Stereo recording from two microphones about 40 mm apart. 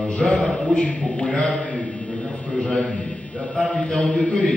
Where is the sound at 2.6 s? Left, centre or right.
Left.